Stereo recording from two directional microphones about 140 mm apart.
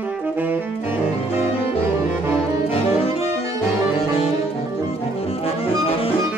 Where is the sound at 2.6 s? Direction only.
45° left (ahead or behind).